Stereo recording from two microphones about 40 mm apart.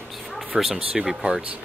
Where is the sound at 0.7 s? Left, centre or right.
Right.